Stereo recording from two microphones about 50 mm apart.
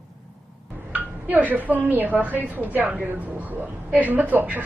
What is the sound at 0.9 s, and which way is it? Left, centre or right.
A woman's voice, right.